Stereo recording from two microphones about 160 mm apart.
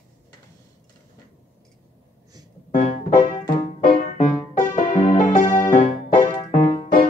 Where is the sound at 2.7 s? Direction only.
50° left (ahead or behind).